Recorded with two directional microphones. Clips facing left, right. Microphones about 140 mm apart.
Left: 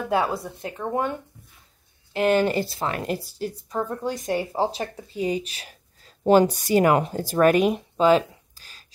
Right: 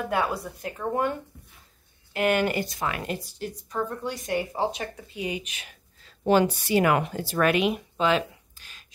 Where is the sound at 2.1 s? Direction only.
30° left (ahead or behind).